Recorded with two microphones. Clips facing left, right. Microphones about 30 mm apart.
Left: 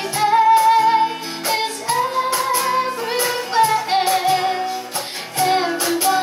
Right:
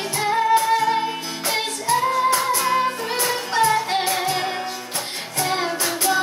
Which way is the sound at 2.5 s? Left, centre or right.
Centre.